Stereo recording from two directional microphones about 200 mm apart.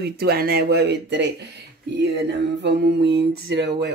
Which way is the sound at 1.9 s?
60° right (ahead or behind).